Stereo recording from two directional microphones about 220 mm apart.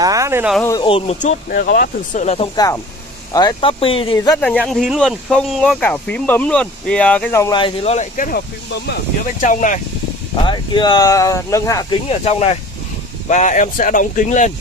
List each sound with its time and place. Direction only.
0.0 s speech: 15° right (ahead or behind)
0.6 s speech: 15° left (ahead or behind)
0.8 s speech: 25° left (ahead or behind)
4.4 s speech: 5° left (ahead or behind); by 9.8 s 35° left (ahead or behind)
10.4 s speech: 20° left (ahead or behind)
12.1 s speech: 30° left (ahead or behind)